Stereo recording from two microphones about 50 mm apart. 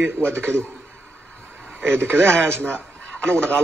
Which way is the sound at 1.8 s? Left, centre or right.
Right.